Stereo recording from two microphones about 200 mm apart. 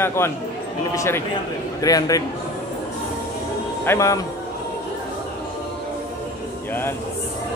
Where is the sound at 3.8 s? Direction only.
15° left (ahead or behind).